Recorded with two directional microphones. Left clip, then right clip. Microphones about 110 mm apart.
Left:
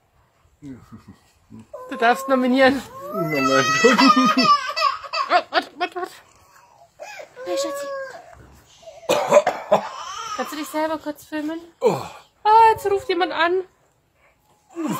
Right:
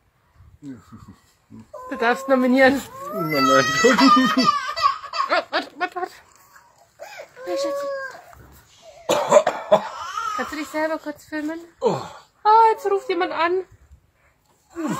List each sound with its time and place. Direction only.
0.6 s speech: 15° left (ahead or behind)
1.9 s speech: centre (ahead or behind)
4.6 s laughter: centre (ahead or behind)
7.4 s a woman's voice: 15° left (ahead or behind)
8.4 s a sound: centre (ahead or behind)
9.0 s cough: 15° left (ahead or behind)
9.9 s a sound: 25° right (ahead or behind)
10.7 s speech: centre (ahead or behind)
11.8 s speech: 30° left (ahead or behind)
12.4 s a sound: 10° left (ahead or behind)
12.8 s a woman's voice: 15° left (ahead or behind)